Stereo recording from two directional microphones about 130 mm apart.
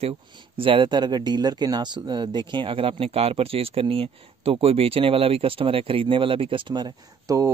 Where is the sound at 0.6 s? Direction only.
45° right (ahead or behind).